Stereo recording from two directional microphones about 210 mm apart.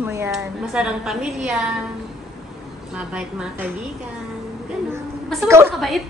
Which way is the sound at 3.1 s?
5° right (ahead or behind).